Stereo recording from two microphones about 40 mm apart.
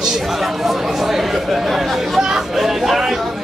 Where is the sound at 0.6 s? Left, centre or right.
Centre.